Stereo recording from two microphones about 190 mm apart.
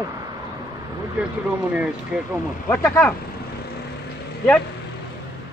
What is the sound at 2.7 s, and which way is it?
Speech, 10° left (ahead or behind).